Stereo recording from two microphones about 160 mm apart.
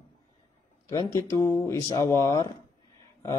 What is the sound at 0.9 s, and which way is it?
A man's voice, 20° left (ahead or behind).